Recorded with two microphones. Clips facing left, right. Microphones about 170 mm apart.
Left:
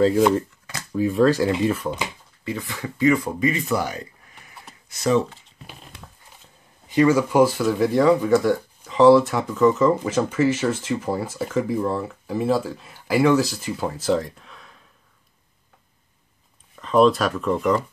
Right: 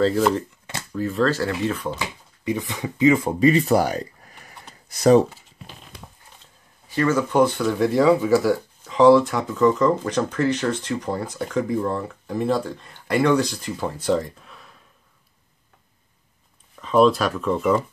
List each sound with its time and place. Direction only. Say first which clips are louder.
0.9 s speech: left 4 dB; 10° left (ahead or behind)
2.4 s speech: right 4 dB; 20° right (ahead or behind); by 5.2 s 40° right (ahead or behind)
6.9 s speech: left 3 dB; 10° left (ahead or behind)
16.7 s speech: even; centre (ahead or behind)